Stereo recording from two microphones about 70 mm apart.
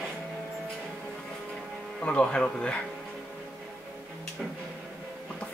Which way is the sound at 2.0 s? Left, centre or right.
Centre.